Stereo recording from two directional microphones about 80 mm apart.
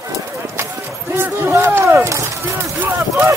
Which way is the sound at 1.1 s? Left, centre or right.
Right.